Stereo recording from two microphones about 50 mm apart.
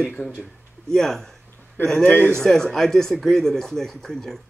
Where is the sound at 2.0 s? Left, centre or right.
Left.